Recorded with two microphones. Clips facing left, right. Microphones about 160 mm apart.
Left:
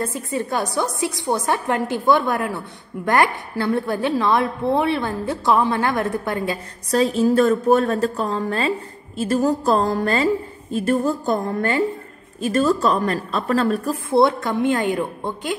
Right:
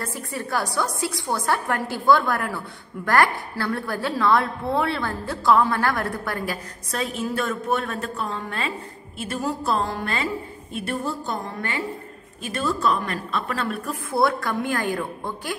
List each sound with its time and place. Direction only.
0.0 s a woman's voice: 20° left (ahead or behind); by 13.9 s 35° left (ahead or behind)
14.1 s a woman's voice: 20° left (ahead or behind)